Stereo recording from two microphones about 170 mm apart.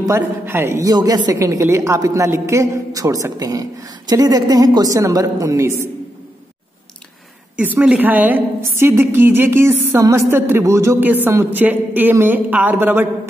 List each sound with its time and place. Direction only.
0.0 s a woman's voice: 15° right (ahead or behind)
7.5 s a woman's voice: 10° right (ahead or behind)